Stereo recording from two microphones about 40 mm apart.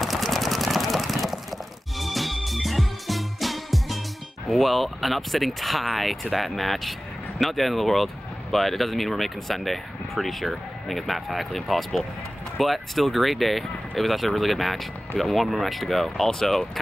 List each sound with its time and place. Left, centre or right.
0.0 s a sound: centre
2.0 s music: centre
4.5 s speech: centre